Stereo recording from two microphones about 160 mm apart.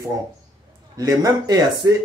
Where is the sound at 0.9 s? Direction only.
20° right (ahead or behind).